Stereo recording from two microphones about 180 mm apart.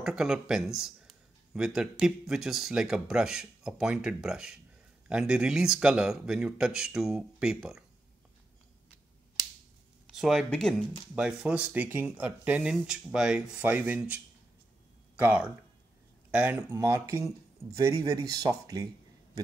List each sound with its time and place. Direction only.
0.0 s speech: 5° right (ahead or behind)
10.1 s speech: centre (ahead or behind); by 18.9 s 20° right (ahead or behind)